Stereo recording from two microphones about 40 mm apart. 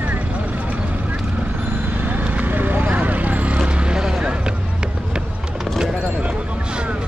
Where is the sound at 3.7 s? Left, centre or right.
Right.